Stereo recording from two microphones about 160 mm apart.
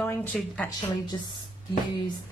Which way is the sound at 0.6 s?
25° left (ahead or behind).